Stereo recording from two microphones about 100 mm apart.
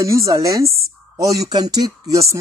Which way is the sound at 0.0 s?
30° right (ahead or behind).